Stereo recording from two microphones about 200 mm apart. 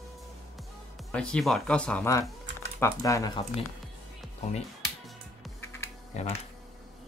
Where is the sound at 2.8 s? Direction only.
15° left (ahead or behind).